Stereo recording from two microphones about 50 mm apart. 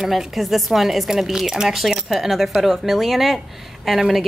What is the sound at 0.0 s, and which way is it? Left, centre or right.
A woman's voice, centre.